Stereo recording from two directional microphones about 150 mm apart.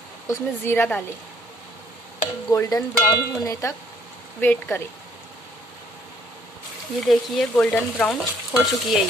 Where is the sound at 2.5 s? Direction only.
20° left (ahead or behind).